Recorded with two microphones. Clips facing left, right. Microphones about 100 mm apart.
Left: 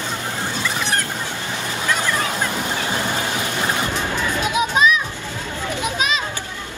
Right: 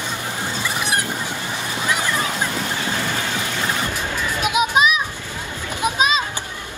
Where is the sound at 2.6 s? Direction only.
15° left (ahead or behind).